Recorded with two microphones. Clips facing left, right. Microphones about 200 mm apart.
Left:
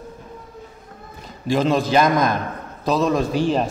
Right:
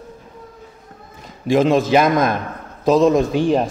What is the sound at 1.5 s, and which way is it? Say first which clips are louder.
Speech: right 4 dB; 15° right (ahead or behind).